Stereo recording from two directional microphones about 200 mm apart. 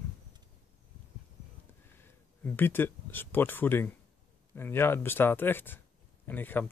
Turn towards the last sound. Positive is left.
turn(degrees=10)  # may be behind; listen again after turning